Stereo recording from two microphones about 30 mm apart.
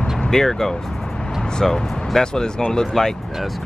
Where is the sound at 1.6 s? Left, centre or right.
Centre.